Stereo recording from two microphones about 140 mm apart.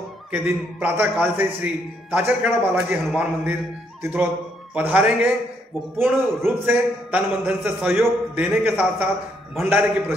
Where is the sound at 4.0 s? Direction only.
15° right (ahead or behind).